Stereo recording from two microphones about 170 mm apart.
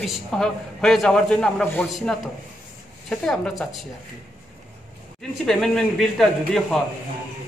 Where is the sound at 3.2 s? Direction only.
Centre (ahead or behind).